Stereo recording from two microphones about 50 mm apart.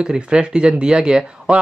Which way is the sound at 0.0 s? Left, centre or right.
Centre.